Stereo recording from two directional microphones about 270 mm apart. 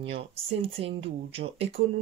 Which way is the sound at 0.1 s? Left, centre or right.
Right.